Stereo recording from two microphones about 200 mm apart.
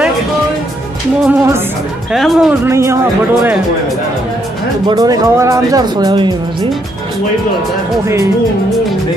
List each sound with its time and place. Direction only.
1.2 s speech: 10° right (ahead or behind)
2.1 s speech: centre (ahead or behind)
2.6 s speech: 15° right (ahead or behind)
4.8 s speech: 20° right (ahead or behind)